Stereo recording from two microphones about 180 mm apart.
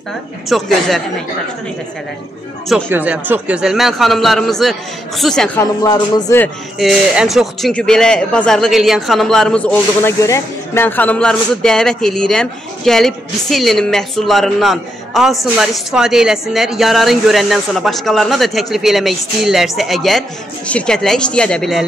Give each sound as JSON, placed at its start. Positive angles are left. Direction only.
{"t": 0.5, "sound": "speech", "side_deg": 0}
{"t": 2.9, "sound": "speech", "side_deg": -10}
{"t": 5.6, "sound": "speech", "side_deg": 20}
{"t": 6.8, "sound": "speech", "side_deg": 0}